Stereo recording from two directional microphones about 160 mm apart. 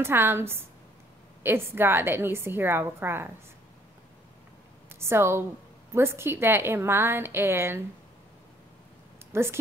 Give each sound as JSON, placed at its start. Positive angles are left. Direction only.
{"t": 0.0, "sound": "a woman's voice", "side_deg": -15}
{"t": 4.8, "sound": "a woman's voice", "side_deg": -15}
{"t": 9.3, "sound": "speech", "side_deg": -15}